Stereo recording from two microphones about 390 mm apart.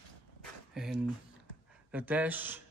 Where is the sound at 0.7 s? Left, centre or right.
Centre.